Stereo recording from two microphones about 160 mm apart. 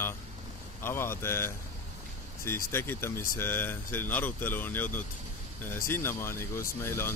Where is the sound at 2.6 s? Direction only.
15° left (ahead or behind).